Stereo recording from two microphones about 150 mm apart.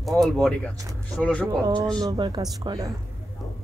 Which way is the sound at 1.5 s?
25° right (ahead or behind).